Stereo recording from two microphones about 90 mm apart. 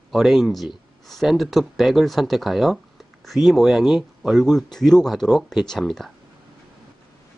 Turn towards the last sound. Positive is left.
turn(degrees=0)  # may be behind; listen again after turning